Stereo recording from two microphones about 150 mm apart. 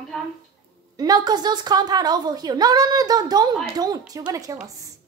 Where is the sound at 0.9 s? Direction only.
25° right (ahead or behind).